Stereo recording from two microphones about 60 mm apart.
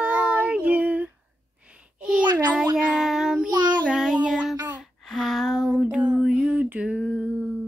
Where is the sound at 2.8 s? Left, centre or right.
Centre.